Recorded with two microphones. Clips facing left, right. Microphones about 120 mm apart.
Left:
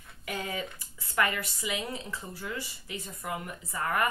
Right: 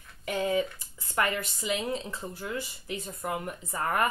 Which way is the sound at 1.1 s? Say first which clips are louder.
Even; 30° right (ahead or behind).